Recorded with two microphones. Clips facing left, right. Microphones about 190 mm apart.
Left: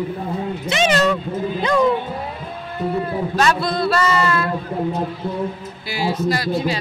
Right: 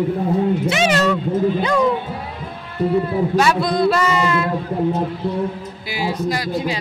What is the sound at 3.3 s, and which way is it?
Speech, 10° right (ahead or behind).